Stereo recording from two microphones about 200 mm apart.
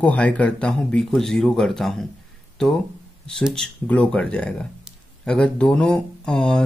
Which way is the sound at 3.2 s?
Centre (ahead or behind).